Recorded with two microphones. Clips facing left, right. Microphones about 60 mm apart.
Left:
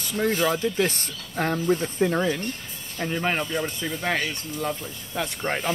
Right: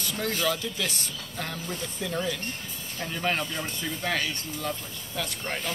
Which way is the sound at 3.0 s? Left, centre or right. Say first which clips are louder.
Left 4 dB; left.